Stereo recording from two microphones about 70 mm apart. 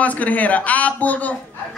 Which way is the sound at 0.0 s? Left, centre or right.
Left.